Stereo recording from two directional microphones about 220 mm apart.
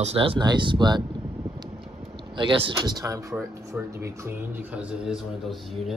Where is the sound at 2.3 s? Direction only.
25° right (ahead or behind); by 5.9 s centre (ahead or behind).